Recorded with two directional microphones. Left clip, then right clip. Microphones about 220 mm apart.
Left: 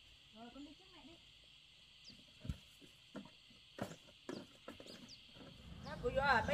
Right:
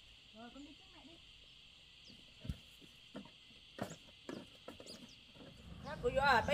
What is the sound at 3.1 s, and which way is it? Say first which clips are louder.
Cricket: right 1 dB; 5° right (ahead or behind).